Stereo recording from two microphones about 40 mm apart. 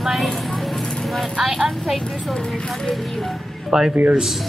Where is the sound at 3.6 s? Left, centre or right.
Centre.